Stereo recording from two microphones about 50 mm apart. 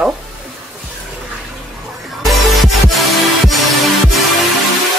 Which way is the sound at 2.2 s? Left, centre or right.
Centre.